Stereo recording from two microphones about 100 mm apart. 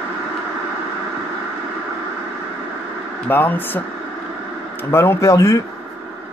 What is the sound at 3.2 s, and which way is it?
Speech, 20° left (ahead or behind).